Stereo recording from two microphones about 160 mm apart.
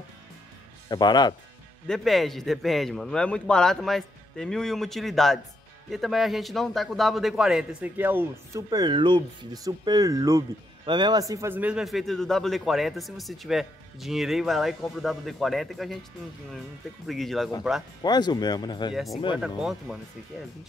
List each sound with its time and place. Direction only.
0.8 s speech: 25° left (ahead or behind)
1.9 s speech: centre (ahead or behind)
8.6 s speech: 25° right (ahead or behind); by 16.0 s centre (ahead or behind)
17.1 s speech: centre (ahead or behind)
18.0 s speech: 25° left (ahead or behind)
19.3 s speech: 5° right (ahead or behind)